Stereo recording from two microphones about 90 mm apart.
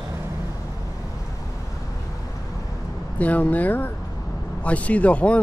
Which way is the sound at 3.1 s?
15° left (ahead or behind).